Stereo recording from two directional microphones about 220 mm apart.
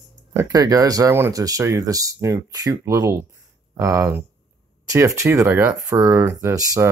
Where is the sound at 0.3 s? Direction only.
15° right (ahead or behind).